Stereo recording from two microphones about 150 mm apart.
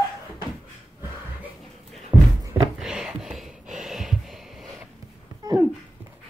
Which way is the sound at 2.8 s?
5° right (ahead or behind).